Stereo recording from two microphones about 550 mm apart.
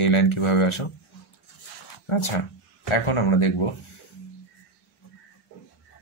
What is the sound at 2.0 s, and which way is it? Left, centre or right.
Speech, left.